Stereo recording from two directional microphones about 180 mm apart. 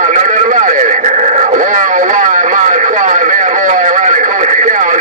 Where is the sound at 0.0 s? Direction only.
45° right (ahead or behind).